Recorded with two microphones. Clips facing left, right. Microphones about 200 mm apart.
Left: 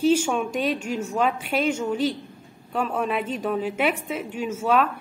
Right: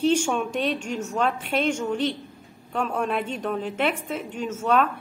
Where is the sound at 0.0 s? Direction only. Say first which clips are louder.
Left 1 dB; 5° left (ahead or behind).